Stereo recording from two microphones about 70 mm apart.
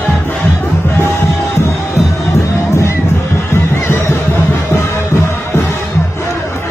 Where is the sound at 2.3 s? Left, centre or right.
Left.